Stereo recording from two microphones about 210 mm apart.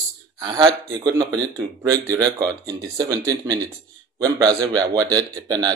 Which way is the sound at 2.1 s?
15° right (ahead or behind).